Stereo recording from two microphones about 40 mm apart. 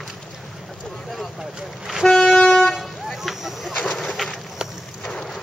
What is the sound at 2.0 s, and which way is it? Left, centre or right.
Vehicle, centre.